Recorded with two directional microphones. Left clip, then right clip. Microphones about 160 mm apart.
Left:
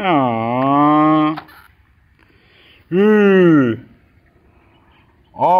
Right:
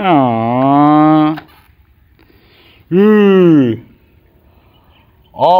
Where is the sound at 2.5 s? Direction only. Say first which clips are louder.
Right 4 dB; 25° right (ahead or behind).